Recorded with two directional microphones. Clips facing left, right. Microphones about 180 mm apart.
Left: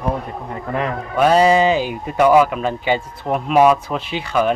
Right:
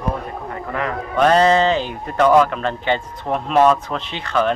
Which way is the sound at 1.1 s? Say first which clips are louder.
Left 1 dB; 10° left (ahead or behind).